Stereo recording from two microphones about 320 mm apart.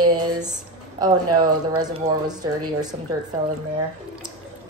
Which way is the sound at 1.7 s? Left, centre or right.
Centre.